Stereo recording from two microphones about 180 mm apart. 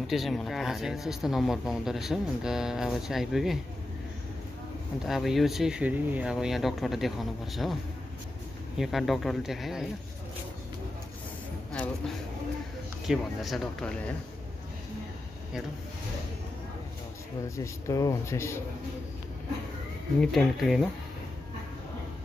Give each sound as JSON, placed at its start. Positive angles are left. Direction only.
{"t": 0.0, "sound": "speech", "side_deg": 0}
{"t": 5.0, "sound": "speech", "side_deg": 0}
{"t": 8.7, "sound": "speech", "side_deg": 0}
{"t": 13.0, "sound": "speech", "side_deg": 0}
{"t": 17.6, "sound": "speech", "side_deg": 20}
{"t": 20.2, "sound": "speech", "side_deg": 0}